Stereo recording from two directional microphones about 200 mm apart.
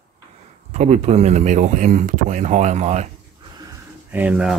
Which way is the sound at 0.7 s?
35° right (ahead or behind).